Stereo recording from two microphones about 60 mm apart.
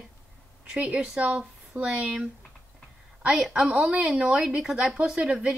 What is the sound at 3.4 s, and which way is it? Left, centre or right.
Speech, centre.